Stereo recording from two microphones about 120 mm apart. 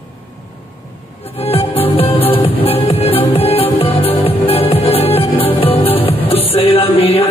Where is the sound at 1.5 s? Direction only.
50° left (ahead or behind).